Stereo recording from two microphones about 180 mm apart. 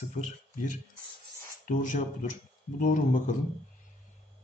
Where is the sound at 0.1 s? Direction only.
45° left (ahead or behind).